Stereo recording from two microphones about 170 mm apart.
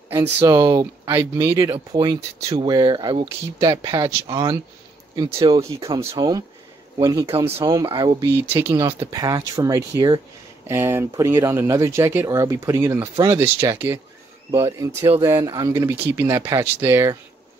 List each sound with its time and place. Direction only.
0.1 s speech: 15° right (ahead or behind); by 4.0 s 35° right (ahead or behind)
4.0 s speech: 20° right (ahead or behind)
7.2 s speech: 35° right (ahead or behind)
8.3 s speech: 10° right (ahead or behind)
8.7 s speech: 35° right (ahead or behind)
9.1 s speech: 20° right (ahead or behind)